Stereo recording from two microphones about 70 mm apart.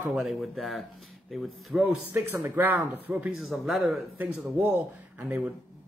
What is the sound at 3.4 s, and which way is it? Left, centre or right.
Speech, centre.